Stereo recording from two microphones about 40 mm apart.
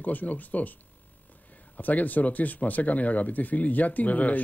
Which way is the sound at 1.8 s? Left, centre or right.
Left.